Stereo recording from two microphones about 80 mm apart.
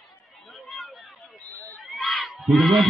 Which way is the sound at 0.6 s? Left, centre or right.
Centre.